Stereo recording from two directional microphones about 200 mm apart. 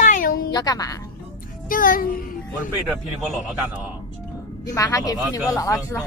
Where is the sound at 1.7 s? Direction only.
45° left (ahead or behind).